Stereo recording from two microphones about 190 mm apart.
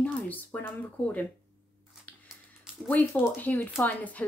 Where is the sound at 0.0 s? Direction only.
10° left (ahead or behind).